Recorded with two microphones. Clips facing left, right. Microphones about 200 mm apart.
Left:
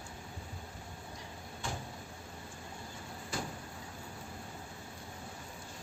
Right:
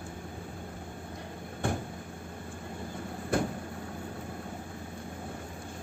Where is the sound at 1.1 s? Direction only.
55° right (ahead or behind).